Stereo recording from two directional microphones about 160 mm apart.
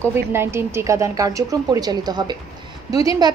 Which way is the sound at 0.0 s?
15° right (ahead or behind).